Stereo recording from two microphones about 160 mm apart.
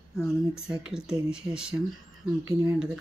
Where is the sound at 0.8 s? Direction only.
5° right (ahead or behind).